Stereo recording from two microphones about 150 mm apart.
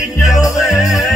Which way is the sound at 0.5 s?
Centre (ahead or behind).